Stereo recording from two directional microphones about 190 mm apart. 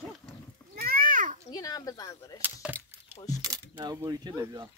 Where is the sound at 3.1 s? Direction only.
20° left (ahead or behind).